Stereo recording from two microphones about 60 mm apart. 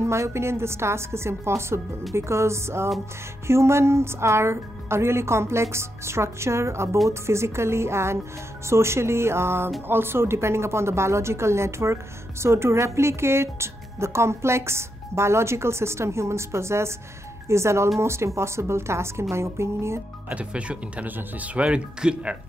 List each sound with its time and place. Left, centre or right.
0.0 s a woman's voice: right
20.2 s speech: right